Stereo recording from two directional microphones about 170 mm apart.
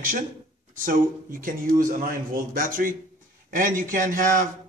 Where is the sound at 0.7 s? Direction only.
55° right (ahead or behind).